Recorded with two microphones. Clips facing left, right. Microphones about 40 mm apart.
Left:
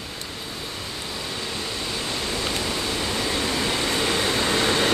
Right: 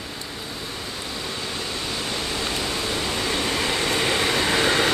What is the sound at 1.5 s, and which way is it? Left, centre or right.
Vehicle, right.